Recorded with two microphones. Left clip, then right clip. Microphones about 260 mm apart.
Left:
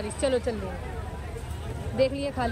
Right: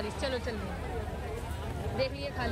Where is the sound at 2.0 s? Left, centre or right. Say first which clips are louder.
Left 9 dB; centre.